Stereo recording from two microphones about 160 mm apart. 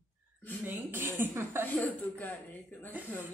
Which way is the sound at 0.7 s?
15° right (ahead or behind).